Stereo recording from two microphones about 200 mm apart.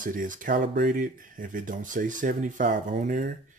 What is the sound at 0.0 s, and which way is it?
Speech, 40° right (ahead or behind).